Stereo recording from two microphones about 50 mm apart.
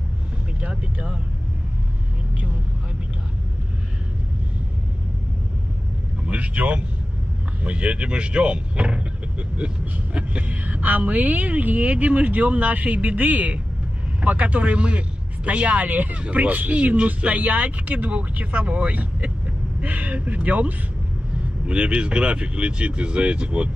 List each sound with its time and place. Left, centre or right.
0.6 s speech: right
6.2 s vehicle: right
7.6 s a man's voice: right
10.1 s a woman's voice: right